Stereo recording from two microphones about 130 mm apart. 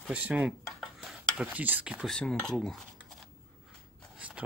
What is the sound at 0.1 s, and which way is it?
Cutlery, 10° right (ahead or behind).